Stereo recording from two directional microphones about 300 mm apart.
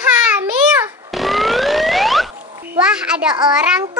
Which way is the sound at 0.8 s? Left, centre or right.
Centre.